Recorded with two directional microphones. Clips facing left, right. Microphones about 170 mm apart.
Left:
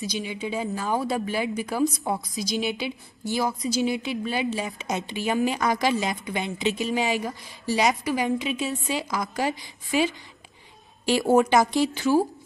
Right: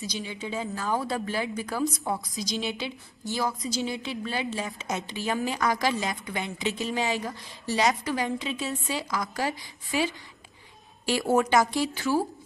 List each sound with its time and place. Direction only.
0.1 s a woman's voice: 15° left (ahead or behind)